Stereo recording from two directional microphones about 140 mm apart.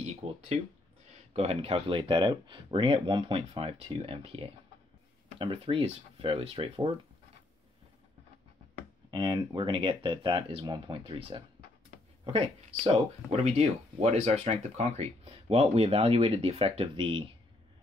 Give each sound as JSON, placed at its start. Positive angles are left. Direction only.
{"t": 0.0, "sound": "speech", "side_deg": -45}
{"t": 9.1, "sound": "speech", "side_deg": -35}